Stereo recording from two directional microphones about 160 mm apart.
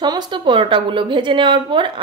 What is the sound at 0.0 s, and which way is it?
Speech, 30° right (ahead or behind).